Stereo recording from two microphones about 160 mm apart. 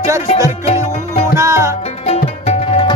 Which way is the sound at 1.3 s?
20° right (ahead or behind).